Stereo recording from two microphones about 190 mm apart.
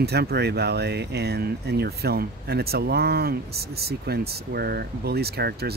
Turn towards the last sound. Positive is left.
turn(degrees=-55)  # may be behind; listen again after turning